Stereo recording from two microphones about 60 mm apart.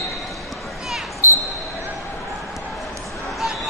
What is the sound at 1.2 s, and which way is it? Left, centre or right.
Basketball bounce, left.